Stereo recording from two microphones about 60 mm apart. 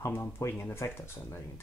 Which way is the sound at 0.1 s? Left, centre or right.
Left.